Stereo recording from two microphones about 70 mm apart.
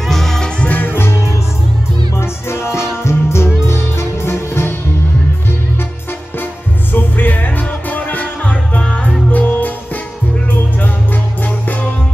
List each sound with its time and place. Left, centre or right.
0.1 s music: centre
0.6 s music: left
6.9 s music: left
9.3 s music: left
11.4 s music: left